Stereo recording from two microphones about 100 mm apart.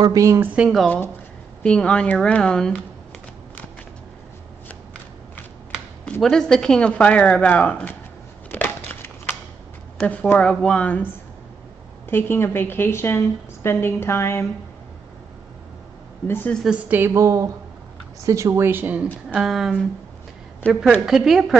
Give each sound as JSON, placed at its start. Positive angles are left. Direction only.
{"t": 0.0, "sound": "a woman's voice", "side_deg": -35}
{"t": 0.8, "sound": "speech", "side_deg": 20}
{"t": 6.2, "sound": "speech", "side_deg": 5}
{"t": 8.5, "sound": "a sound", "side_deg": 20}
{"t": 9.9, "sound": "speech", "side_deg": 15}
{"t": 12.1, "sound": "a woman's voice", "side_deg": 20}
{"t": 16.3, "sound": "a woman's voice", "side_deg": 20}
{"t": 16.6, "sound": "a woman's voice", "side_deg": -15}
{"t": 17.1, "sound": "a woman's voice", "side_deg": -30}
{"t": 19.3, "sound": "a woman's voice", "side_deg": 0}
{"t": 21.0, "sound": "a woman's voice", "side_deg": -5}